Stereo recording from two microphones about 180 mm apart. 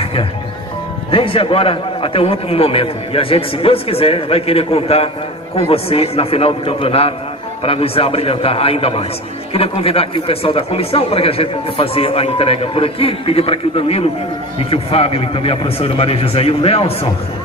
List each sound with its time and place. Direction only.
1.1 s speech: 30° left (ahead or behind)